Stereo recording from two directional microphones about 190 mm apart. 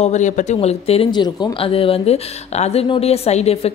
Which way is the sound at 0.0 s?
40° left (ahead or behind).